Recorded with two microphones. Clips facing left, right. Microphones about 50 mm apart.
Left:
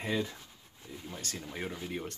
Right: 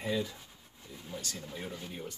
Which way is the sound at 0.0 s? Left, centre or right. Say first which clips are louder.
Even; left.